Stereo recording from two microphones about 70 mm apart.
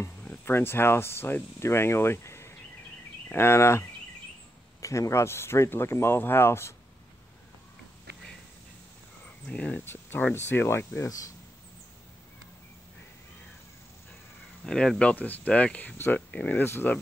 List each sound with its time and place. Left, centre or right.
0.5 s speech: left
4.8 s speech: left
9.5 s speech: centre
9.8 s speech: left
11.0 s speech: left
14.6 s speech: centre
16.5 s speech: left